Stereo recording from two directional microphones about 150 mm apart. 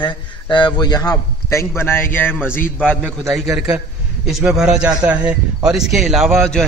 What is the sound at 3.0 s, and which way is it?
Speech, centre (ahead or behind).